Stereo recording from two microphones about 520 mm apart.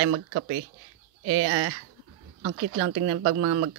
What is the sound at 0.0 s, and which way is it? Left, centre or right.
Speech, right.